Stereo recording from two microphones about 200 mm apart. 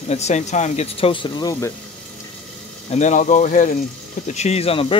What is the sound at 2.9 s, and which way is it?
Speech, 35° left (ahead or behind).